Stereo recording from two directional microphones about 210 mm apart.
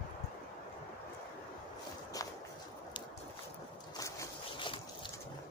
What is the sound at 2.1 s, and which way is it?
Walk, 15° left (ahead or behind).